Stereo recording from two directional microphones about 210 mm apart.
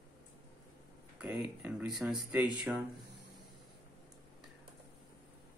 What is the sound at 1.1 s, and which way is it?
Speech, 5° right (ahead or behind).